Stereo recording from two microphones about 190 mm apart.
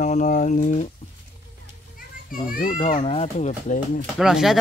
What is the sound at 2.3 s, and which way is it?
Speech, 45° left (ahead or behind).